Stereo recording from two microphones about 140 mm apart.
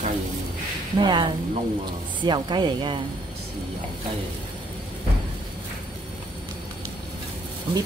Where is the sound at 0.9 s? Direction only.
35° right (ahead or behind).